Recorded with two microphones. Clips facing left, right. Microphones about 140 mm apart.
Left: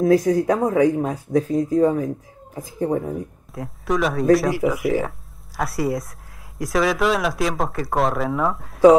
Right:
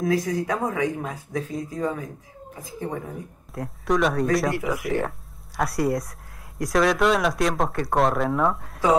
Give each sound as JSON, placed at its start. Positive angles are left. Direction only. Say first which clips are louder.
{"t": 0.0, "sound": "speech", "louder": "left 7 dB", "side_deg": 35}
{"t": 3.5, "sound": "speech", "louder": "even", "side_deg": 0}